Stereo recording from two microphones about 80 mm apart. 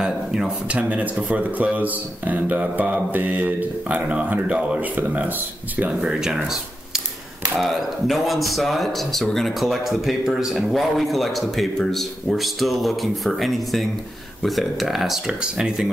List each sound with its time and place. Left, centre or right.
0.0 s speech: centre